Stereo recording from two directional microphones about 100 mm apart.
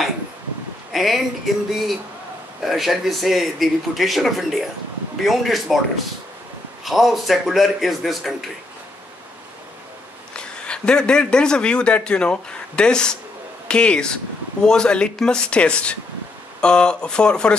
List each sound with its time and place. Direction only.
0.9 s speech: centre (ahead or behind)
6.8 s speech: centre (ahead or behind)
10.3 s a man's voice: 10° left (ahead or behind)